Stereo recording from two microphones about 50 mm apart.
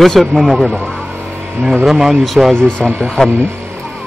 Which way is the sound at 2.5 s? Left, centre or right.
Centre.